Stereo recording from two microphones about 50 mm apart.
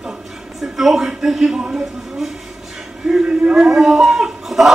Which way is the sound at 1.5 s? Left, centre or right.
Centre.